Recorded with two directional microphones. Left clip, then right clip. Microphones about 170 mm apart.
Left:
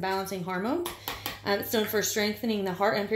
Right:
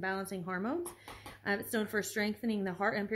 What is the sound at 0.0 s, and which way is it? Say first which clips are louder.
Speech: left 7 dB; 25° right (ahead or behind).